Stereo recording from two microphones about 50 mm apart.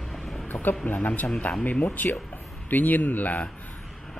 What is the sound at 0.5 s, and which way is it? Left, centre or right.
Speech, left.